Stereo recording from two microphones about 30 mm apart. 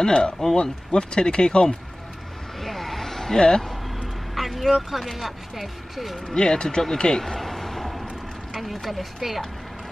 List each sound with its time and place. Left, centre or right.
0.0 s speech: left
2.6 s vehicle: centre
3.3 s music: left
4.4 s speech: centre
6.2 s speech: left
7.3 s a sound: centre
8.5 s speech: centre